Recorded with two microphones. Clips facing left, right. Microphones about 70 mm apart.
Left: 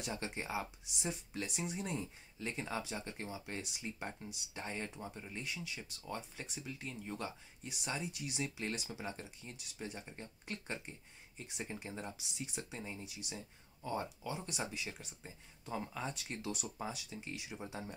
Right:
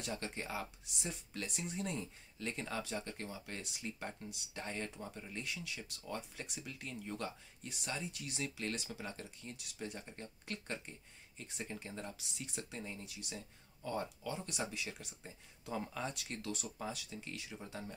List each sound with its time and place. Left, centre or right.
0.0 s speech: centre
9.6 s speech: centre
16.9 s speech: centre
17.3 s speech: centre